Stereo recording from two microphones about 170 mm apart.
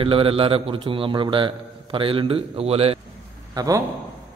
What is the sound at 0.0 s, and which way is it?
A man's voice, 35° right (ahead or behind).